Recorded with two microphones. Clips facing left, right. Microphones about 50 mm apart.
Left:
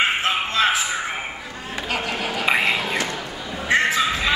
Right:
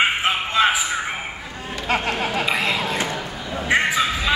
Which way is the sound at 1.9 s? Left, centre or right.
Right.